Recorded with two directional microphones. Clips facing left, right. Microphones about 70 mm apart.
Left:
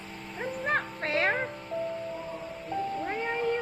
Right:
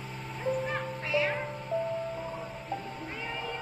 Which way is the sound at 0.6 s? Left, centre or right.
Left.